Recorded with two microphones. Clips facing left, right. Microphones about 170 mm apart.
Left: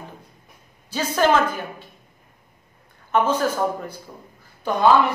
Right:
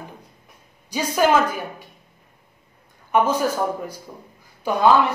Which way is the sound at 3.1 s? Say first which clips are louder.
Right 1 dB; 10° right (ahead or behind).